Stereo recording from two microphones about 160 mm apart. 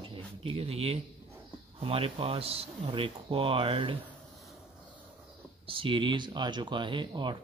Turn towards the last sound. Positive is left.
turn(degrees=-30)  # may be behind; listen again after turning